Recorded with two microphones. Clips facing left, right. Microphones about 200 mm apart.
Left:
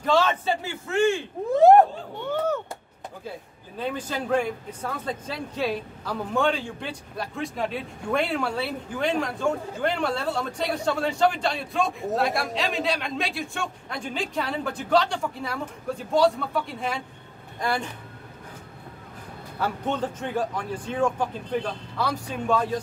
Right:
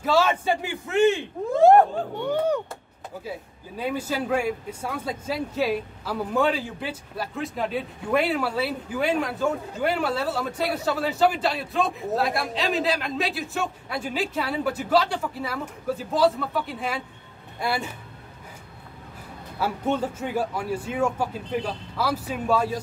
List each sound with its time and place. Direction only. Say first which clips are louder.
0.0 s speech: right 1 dB; 10° right (ahead or behind)
2.2 s speech: right 1 dB; 15° right (ahead or behind)
19.6 s speech: right 2 dB; 10° right (ahead or behind)